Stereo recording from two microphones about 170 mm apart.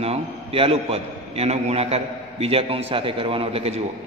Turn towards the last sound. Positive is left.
turn(degrees=-35)  # may be behind; listen again after turning